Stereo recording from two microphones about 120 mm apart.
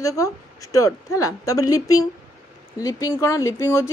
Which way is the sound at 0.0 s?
25° left (ahead or behind).